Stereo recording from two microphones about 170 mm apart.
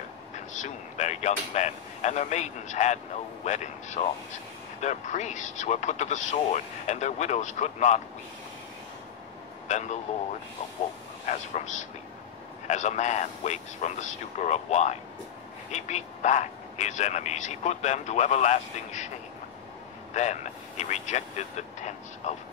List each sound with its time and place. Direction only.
0.6 s speech: 45° left (ahead or behind)
9.7 s speech: 45° left (ahead or behind)
11.2 s speech: 45° left (ahead or behind)
20.2 s speech: 45° left (ahead or behind)